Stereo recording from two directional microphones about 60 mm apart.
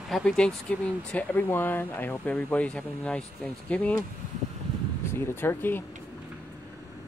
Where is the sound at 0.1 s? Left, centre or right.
Centre.